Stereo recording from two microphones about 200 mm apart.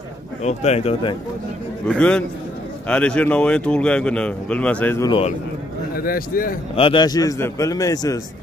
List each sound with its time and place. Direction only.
0.4 s speech: 35° left (ahead or behind)
1.9 s speech: 5° left (ahead or behind)
5.9 s a man's voice: 45° left (ahead or behind)
6.7 s a man's voice: 25° left (ahead or behind)